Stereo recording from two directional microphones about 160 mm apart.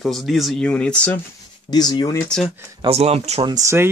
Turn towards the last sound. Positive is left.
turn(degrees=-15)  # may be behind; listen again after turning